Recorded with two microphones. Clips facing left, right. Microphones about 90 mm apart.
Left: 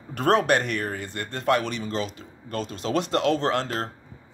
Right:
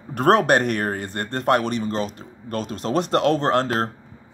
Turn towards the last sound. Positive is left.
turn(degrees=-45)  # may be behind; listen again after turning